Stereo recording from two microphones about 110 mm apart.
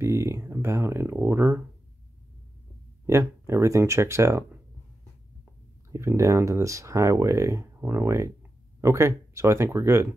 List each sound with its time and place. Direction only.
0.0 s speech: 25° right (ahead or behind)
3.1 s speech: 25° right (ahead or behind)